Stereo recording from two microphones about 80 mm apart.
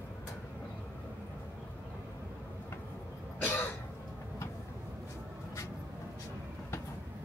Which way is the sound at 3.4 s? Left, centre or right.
Left.